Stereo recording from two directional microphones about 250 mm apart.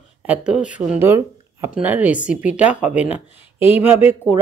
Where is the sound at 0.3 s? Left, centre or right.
Centre.